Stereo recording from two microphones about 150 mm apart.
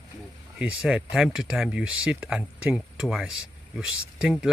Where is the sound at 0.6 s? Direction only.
5° right (ahead or behind).